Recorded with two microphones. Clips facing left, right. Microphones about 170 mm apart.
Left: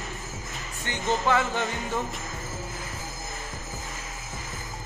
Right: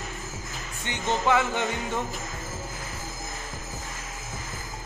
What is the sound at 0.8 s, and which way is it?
Music, 15° right (ahead or behind).